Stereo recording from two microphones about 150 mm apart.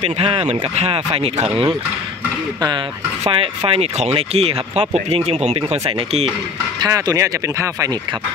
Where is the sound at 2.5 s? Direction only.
30° right (ahead or behind).